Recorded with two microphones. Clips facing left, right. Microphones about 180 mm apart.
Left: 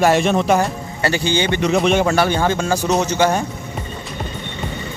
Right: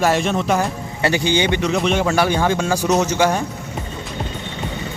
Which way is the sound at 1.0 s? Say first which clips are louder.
Right 1 dB; 15° right (ahead or behind).